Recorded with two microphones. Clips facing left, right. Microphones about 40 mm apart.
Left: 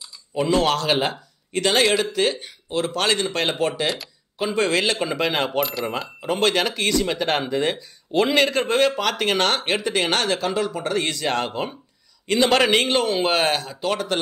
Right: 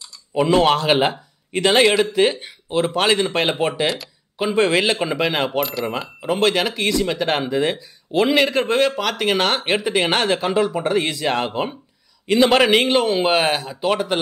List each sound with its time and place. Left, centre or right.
0.3 s a man's voice: centre
3.8 s speech: centre
4.4 s speech: centre